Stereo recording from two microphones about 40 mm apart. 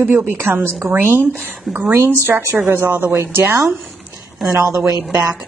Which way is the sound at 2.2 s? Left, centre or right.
Right.